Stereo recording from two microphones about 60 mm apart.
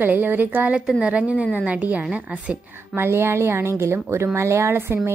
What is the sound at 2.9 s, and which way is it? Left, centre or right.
A woman's voice, right.